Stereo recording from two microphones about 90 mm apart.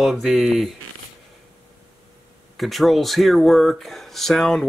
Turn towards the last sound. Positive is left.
turn(degrees=5)  # may be behind; listen again after turning